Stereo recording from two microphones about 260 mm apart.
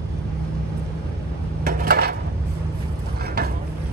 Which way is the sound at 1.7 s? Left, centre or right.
Right.